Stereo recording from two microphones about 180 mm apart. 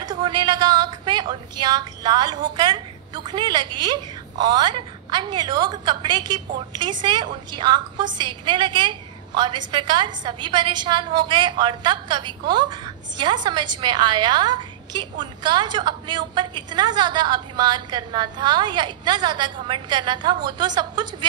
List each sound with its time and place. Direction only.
0.1 s a woman's voice: 25° right (ahead or behind)